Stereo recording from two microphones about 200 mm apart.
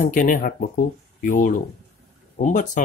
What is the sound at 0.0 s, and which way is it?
Speech, 40° left (ahead or behind).